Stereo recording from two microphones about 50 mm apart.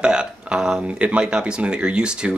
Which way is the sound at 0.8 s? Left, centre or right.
Right.